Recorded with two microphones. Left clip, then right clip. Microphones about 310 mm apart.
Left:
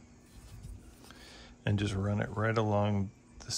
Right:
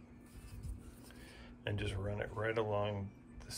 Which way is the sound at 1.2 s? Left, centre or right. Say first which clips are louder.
Left 5 dB; centre.